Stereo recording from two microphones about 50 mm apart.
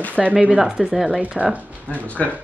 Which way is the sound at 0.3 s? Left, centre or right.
Right.